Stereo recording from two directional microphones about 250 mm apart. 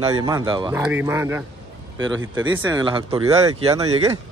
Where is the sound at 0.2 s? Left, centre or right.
Centre.